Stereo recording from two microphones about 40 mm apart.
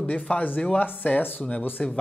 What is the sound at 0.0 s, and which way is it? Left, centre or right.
Speech, left.